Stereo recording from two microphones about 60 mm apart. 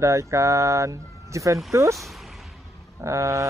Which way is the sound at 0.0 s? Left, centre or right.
Right.